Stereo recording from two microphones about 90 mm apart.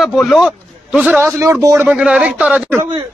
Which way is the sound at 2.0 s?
15° right (ahead or behind).